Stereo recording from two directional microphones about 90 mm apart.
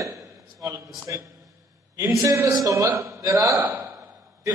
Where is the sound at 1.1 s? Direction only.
35° right (ahead or behind).